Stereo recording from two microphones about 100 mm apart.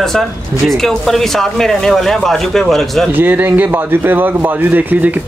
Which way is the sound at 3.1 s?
20° right (ahead or behind).